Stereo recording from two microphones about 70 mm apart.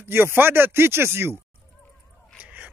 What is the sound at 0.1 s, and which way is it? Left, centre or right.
A man's voice, right.